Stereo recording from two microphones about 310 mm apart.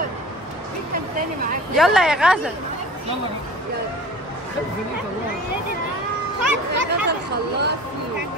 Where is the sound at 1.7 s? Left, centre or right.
Centre.